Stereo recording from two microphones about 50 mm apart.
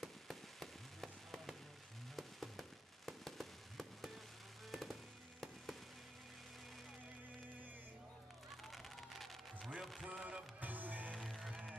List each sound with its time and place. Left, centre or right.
0.0 s music: centre
3.1 s fireworks: centre
8.6 s a sound: centre
9.8 s music: centre
10.0 s music: centre
10.6 s music: right
11.1 s music: centre